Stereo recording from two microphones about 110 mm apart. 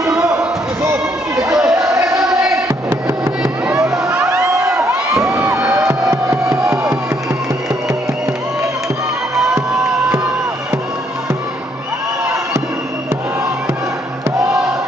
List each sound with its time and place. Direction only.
0.0 s basketball bounce: 5° right (ahead or behind)
0.8 s a sound: 25° right (ahead or behind)
1.5 s a sound: 5° right (ahead or behind)
2.0 s music: 30° right (ahead or behind)
3.8 s music: 5° right (ahead or behind)
5.2 s crowd: 25° right (ahead or behind)
5.7 s music: 25° right (ahead or behind)